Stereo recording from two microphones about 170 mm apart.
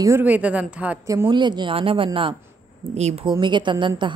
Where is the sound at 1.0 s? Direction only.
20° right (ahead or behind).